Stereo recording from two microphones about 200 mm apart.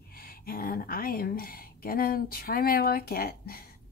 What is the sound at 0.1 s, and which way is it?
Speech, 50° left (ahead or behind).